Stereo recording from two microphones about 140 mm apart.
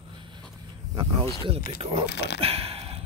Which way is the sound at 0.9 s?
35° right (ahead or behind).